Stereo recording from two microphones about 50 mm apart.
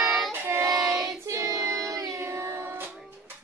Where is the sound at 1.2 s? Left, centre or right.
Right.